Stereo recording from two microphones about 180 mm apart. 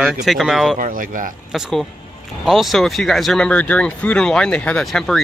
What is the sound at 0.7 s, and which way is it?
Speech, 50° right (ahead or behind).